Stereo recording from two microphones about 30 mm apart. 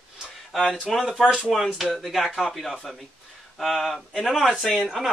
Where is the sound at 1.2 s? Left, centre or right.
Centre.